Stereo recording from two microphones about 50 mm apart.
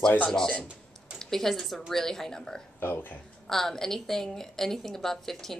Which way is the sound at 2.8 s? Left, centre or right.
Left.